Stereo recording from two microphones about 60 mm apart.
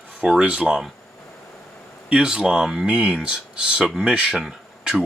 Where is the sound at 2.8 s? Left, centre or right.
Centre.